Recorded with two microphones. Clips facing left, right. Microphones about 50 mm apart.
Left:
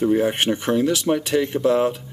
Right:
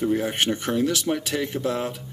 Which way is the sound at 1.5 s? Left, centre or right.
Left.